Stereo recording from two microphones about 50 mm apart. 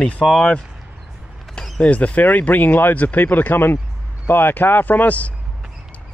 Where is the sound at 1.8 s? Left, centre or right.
Left.